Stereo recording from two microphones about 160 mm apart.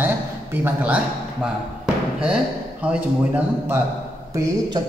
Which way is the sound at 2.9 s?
10° right (ahead or behind).